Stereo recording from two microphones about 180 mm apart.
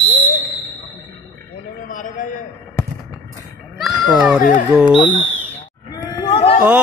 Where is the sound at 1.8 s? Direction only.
45° left (ahead or behind).